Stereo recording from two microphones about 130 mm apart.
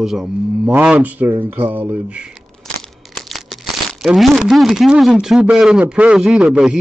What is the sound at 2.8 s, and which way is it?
Crumpling, centre (ahead or behind).